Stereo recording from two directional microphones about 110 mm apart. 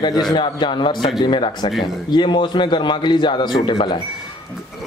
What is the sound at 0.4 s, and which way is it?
A man's voice, 45° left (ahead or behind).